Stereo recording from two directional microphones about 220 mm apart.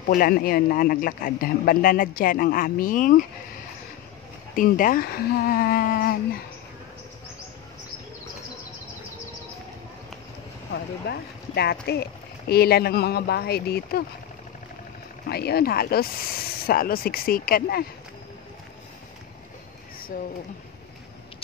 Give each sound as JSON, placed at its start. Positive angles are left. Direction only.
{"t": 0.1, "sound": "speech", "side_deg": 40}
{"t": 4.6, "sound": "speech", "side_deg": 40}
{"t": 10.7, "sound": "speech", "side_deg": 45}
{"t": 15.2, "sound": "speech", "side_deg": 45}